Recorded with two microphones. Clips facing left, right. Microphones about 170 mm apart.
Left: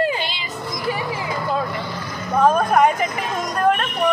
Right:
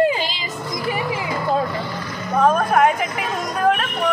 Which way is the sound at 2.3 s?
Centre (ahead or behind).